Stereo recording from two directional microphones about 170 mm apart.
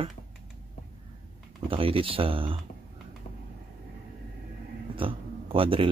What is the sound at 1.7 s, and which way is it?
Speech, 35° right (ahead or behind).